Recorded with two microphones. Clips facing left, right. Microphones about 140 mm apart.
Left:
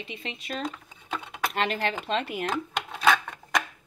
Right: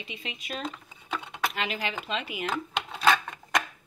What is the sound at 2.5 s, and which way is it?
Rub, 5° left (ahead or behind).